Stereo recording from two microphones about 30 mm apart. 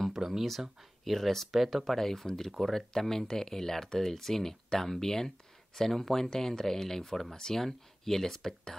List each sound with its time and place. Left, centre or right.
0.1 s speech: centre
1.0 s speech: centre